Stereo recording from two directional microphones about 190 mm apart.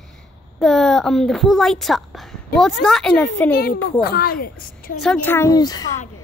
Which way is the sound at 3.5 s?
50° left (ahead or behind).